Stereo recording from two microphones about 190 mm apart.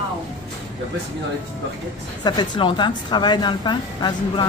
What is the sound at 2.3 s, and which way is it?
A woman's voice, 25° left (ahead or behind).